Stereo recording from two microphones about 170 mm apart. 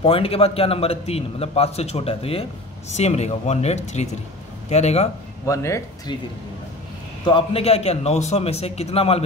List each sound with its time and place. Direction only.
0.0 s a man's voice: 35° left (ahead or behind)
5.5 s speech: 15° left (ahead or behind)
7.2 s a man's voice: 30° left (ahead or behind)